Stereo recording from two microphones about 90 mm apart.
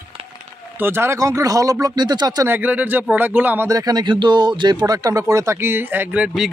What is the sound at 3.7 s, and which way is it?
Speech, 45° right (ahead or behind).